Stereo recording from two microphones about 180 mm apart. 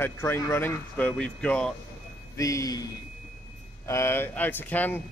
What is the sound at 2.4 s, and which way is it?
Speech, 20° left (ahead or behind).